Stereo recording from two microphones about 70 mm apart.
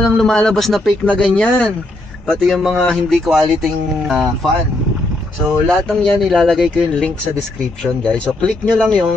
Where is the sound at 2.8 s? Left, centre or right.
Centre.